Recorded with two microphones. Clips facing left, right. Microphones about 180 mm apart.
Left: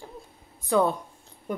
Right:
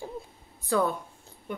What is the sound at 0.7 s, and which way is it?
Speech, 20° left (ahead or behind).